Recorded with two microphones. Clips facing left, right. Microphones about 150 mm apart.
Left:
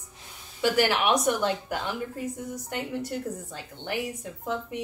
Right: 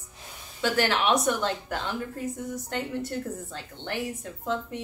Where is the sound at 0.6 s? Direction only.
10° left (ahead or behind).